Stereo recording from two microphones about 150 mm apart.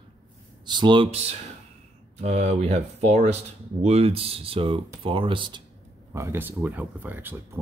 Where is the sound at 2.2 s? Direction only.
45° right (ahead or behind).